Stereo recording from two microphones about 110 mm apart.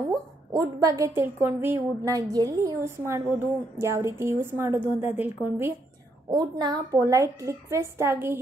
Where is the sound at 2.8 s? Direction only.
20° right (ahead or behind).